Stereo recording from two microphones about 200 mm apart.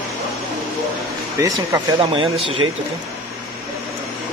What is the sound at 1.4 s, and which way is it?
Speech, 20° right (ahead or behind).